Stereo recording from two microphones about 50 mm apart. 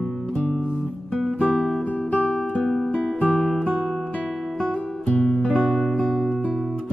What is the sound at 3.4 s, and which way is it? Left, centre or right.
Music, centre.